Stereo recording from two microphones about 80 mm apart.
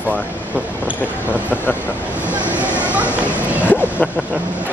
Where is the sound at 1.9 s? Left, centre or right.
Centre.